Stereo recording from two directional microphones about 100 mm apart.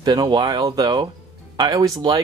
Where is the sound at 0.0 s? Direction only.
45° right (ahead or behind).